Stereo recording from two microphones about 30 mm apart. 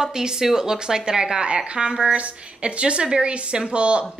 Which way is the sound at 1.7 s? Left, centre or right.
Right.